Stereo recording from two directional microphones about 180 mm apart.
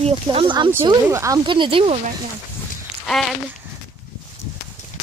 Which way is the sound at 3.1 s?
Centre (ahead or behind).